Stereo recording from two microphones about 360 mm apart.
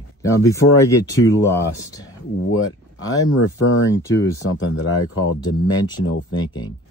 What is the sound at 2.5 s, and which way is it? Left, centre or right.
Speech, left.